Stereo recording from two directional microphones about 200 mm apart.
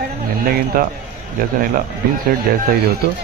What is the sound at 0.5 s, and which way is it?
Speech, 45° right (ahead or behind).